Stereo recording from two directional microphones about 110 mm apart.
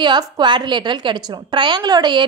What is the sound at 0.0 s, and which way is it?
A woman's voice, 45° right (ahead or behind).